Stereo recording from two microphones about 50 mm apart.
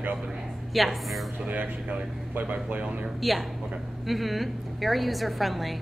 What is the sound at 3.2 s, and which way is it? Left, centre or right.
A woman's voice, centre.